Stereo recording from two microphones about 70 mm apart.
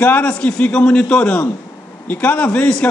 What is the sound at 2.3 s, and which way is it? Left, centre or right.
Speech, centre.